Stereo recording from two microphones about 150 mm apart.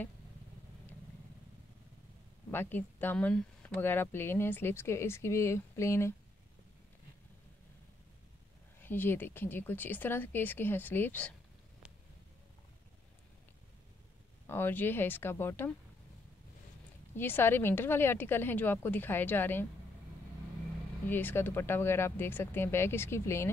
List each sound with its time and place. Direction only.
2.5 s speech: 15° left (ahead or behind)
8.8 s speech: 15° left (ahead or behind)
14.5 s speech: 15° left (ahead or behind)
17.1 s speech: 15° left (ahead or behind)
21.1 s speech: 15° left (ahead or behind)